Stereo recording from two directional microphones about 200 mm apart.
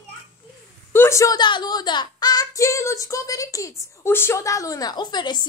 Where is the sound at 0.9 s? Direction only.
15° left (ahead or behind).